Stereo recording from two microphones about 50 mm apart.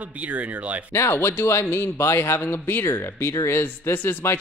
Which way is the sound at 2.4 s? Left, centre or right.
Left.